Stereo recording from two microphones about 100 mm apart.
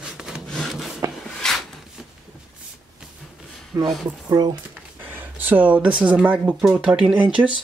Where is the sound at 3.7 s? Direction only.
30° right (ahead or behind).